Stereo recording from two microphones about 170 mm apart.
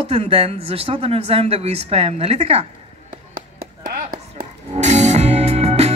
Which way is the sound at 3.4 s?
55° right (ahead or behind).